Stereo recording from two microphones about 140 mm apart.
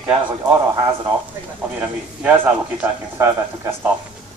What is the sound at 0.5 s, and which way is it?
Speech, 25° right (ahead or behind).